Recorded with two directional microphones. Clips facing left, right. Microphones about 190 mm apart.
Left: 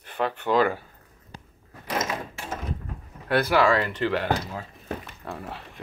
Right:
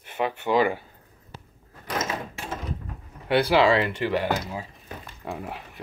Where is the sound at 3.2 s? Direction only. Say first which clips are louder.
Right 2 dB; 25° right (ahead or behind).